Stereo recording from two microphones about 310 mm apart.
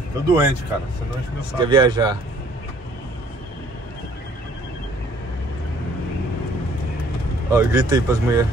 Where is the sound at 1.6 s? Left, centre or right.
Centre.